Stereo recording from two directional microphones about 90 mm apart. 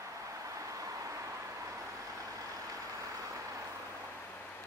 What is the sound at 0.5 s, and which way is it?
Vehicle, 35° right (ahead or behind).